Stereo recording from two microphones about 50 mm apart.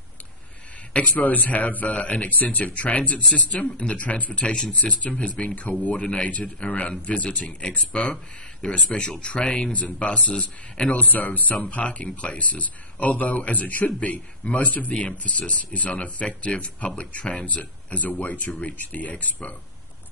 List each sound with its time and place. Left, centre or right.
0.9 s a man's voice: left